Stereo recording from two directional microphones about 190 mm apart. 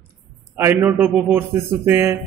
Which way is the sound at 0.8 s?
Centre (ahead or behind).